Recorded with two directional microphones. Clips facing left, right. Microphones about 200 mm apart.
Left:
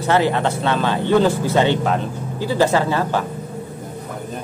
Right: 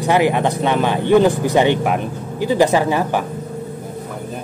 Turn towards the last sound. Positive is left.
turn(degrees=-15)  # may be behind; listen again after turning